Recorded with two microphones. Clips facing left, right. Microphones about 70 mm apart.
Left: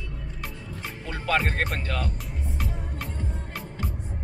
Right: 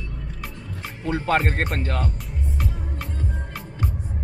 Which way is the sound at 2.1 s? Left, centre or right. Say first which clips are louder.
Right 3 dB; centre.